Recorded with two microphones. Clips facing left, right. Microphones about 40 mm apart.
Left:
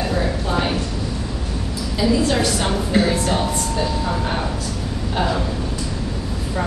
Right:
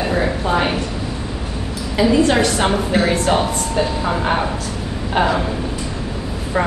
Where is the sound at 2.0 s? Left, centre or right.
Right.